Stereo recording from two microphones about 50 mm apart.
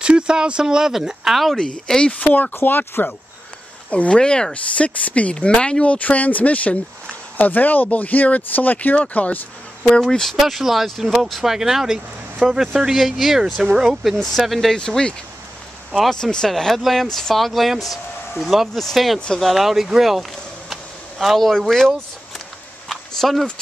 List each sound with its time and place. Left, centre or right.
0.0 s speech: centre
1.9 s speech: centre
2.6 s speech: left
3.9 s speech: left
9.9 s speech: centre
10.3 s speech: centre
12.9 s speech: centre
14.1 s speech: centre
14.8 s speech: centre
19.1 s speech: centre
19.4 s speech: centre
22.8 s a sound: centre